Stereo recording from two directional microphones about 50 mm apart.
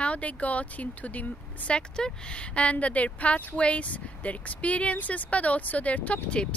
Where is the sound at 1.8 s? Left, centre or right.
Centre.